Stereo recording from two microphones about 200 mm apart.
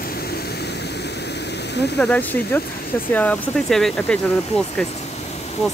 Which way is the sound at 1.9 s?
5° left (ahead or behind).